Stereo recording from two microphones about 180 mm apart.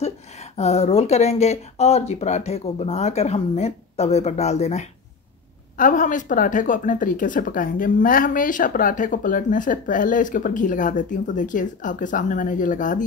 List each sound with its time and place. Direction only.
0.0 s a woman's voice: 35° left (ahead or behind)